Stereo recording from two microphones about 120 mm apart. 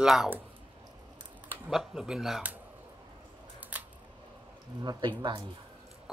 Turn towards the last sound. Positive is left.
turn(degrees=-35)  # may be behind; listen again after turning